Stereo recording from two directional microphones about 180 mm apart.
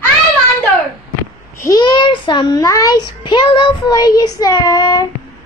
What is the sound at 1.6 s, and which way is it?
A child's voice, 20° left (ahead or behind).